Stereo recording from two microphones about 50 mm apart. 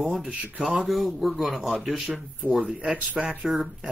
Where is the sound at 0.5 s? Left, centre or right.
Right.